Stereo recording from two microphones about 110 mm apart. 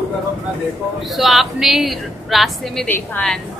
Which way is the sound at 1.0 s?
Centre (ahead or behind).